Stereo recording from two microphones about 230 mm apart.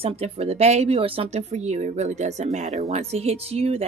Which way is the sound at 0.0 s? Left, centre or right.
Right.